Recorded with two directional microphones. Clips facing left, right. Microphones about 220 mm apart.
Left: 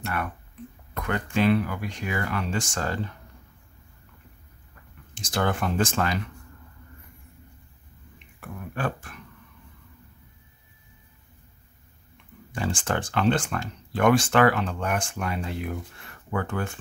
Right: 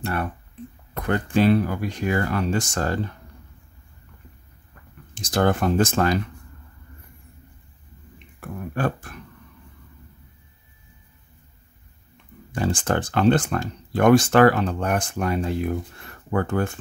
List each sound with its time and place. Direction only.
0.0 s speech: 30° right (ahead or behind)
5.3 s speech: 40° right (ahead or behind)
8.4 s beatboxing: 40° right (ahead or behind)
12.5 s speech: 40° right (ahead or behind)